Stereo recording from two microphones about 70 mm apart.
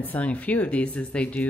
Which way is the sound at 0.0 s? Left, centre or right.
Left.